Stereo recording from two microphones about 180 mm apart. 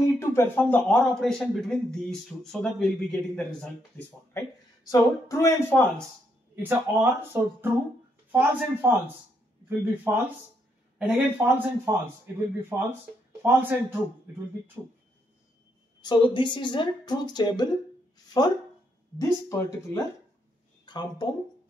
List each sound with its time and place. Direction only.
0.2 s speech: 15° left (ahead or behind)
4.3 s speech: 20° left (ahead or behind)
6.5 s a man's voice: 10° right (ahead or behind)
16.0 s a woman's voice: 25° left (ahead or behind)
18.1 s a sound: 20° left (ahead or behind)
19.1 s speech: 15° left (ahead or behind)